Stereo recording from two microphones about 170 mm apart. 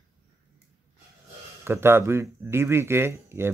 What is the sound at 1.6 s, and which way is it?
Speech, 15° right (ahead or behind).